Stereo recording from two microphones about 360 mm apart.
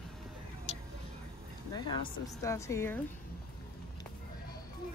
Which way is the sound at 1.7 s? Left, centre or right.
Centre.